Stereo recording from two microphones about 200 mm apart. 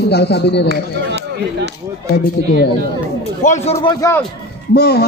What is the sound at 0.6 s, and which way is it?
Speech, 55° right (ahead or behind).